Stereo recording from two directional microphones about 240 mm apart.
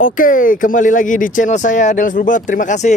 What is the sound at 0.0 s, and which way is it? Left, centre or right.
Speech, left.